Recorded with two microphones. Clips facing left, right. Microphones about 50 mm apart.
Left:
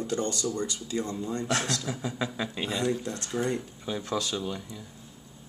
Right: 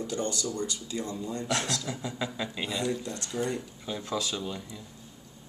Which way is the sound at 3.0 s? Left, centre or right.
Left.